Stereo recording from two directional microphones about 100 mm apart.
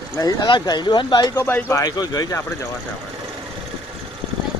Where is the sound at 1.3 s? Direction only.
20° left (ahead or behind).